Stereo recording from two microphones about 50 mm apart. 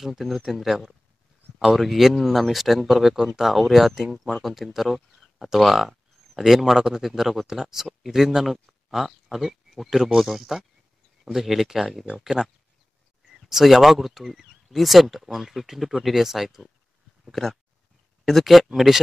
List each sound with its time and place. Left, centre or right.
0.0 s speech: centre
13.5 s speech: centre